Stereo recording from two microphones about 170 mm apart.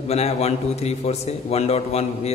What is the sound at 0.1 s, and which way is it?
A man's voice, 40° left (ahead or behind).